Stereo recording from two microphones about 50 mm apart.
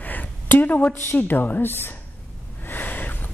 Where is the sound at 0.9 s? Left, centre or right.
Left.